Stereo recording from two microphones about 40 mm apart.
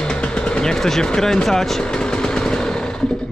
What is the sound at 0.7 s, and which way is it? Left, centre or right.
Speech, centre.